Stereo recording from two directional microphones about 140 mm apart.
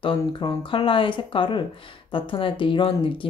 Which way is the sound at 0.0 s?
35° left (ahead or behind).